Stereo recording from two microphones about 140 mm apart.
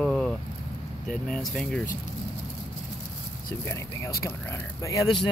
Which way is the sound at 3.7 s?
20° left (ahead or behind).